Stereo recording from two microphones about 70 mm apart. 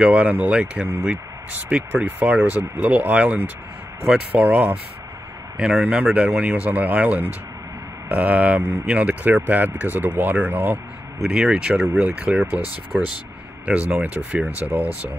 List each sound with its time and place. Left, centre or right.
0.0 s speech: centre
4.4 s speech: right
5.6 s speech: centre; by 10.8 s right
11.2 s speech: centre
12.9 s speech: centre
13.7 s speech: right